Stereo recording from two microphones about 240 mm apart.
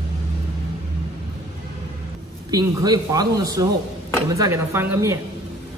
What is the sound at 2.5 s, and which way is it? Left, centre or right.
Speech, centre.